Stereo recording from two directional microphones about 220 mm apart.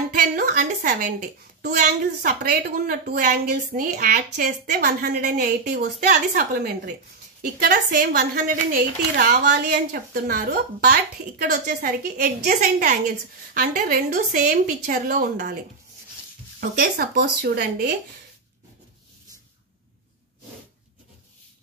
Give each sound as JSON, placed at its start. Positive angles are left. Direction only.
{"t": 0.1, "sound": "a woman's voice", "side_deg": -40}